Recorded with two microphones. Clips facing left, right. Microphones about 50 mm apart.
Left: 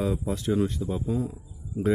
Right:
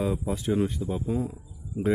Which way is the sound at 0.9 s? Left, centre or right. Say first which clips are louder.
Even; right.